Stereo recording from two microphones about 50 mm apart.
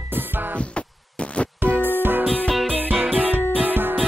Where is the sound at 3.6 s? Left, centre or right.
Right.